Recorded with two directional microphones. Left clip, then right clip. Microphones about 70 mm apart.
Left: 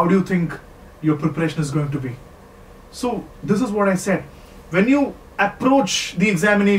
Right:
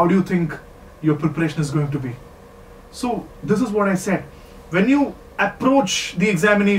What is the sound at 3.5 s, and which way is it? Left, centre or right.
Speech, centre.